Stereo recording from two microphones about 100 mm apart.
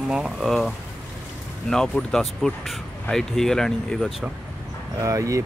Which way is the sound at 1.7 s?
5° left (ahead or behind).